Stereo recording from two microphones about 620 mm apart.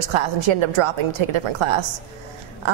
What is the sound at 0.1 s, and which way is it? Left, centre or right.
A woman's voice, right.